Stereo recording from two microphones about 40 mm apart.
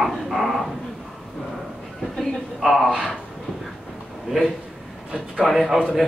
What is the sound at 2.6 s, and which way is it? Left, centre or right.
Speech, centre.